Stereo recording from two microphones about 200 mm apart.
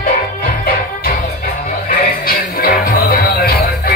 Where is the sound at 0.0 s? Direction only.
45° left (ahead or behind).